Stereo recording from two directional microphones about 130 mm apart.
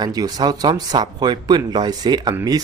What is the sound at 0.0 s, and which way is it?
Speech, 30° right (ahead or behind).